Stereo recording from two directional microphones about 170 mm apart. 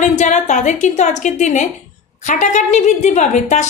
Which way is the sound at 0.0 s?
45° left (ahead or behind).